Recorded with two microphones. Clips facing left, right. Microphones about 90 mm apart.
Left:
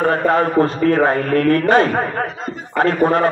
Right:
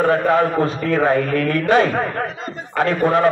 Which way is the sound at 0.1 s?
45° left (ahead or behind).